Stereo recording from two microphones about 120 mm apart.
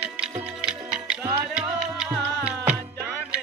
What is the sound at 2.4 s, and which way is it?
Music, 10° right (ahead or behind).